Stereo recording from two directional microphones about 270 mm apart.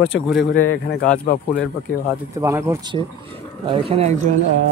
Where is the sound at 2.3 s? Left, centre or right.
Centre.